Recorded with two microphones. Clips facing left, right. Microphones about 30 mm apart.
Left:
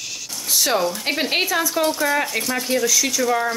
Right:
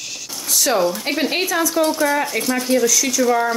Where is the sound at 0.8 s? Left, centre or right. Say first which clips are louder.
Right 3 dB; centre.